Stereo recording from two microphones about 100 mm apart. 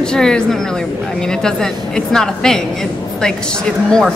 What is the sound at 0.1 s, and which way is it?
A woman's voice, 5° left (ahead or behind).